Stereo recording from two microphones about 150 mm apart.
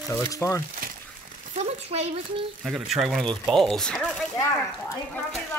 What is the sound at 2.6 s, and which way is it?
Speech, centre (ahead or behind).